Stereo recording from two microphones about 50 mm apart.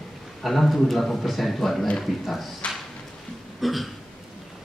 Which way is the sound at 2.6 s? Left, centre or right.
Left.